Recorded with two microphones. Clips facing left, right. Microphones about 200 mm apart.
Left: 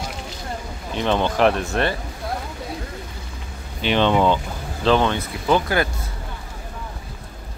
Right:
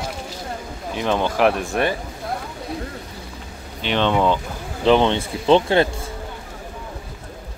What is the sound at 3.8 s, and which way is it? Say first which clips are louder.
Speech: left 1 dB; 5° left (ahead or behind).